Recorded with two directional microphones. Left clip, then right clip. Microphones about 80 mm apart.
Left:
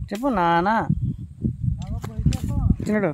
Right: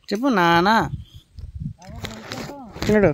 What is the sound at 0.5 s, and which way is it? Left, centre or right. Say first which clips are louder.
Speech: right 3 dB; right.